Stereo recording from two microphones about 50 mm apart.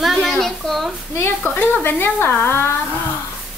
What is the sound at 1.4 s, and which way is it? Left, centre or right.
Speech, left.